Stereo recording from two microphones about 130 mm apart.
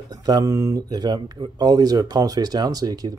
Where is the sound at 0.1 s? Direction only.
30° right (ahead or behind).